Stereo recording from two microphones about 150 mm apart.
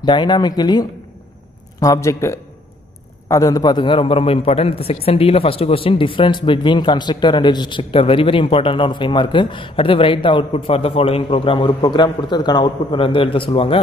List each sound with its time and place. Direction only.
0.0 s a man's voice: 30° left (ahead or behind)